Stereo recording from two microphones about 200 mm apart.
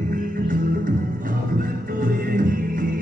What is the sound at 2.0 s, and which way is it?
Music, 45° right (ahead or behind).